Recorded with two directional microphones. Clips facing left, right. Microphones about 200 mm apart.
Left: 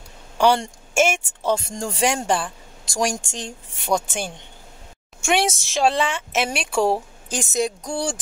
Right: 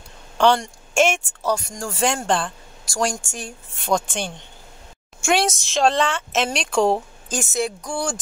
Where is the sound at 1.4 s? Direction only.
25° left (ahead or behind); by 4.3 s 10° left (ahead or behind).